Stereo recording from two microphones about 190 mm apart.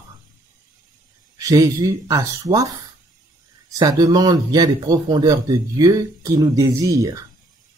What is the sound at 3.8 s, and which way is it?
A man's voice, 20° right (ahead or behind).